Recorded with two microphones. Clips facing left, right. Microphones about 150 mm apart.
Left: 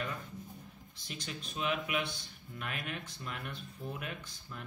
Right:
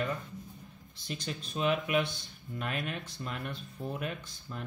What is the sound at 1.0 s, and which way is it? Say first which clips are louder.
Speech: right 5 dB; 30° right (ahead or behind).